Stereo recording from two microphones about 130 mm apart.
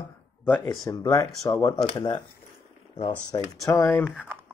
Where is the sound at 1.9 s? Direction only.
40° left (ahead or behind).